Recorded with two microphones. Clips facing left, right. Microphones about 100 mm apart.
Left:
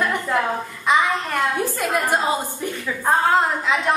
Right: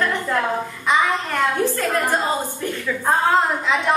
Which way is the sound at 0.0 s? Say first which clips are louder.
Even; 15° left (ahead or behind).